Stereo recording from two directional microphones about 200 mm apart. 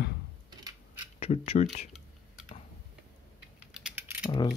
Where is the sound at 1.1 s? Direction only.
30° left (ahead or behind).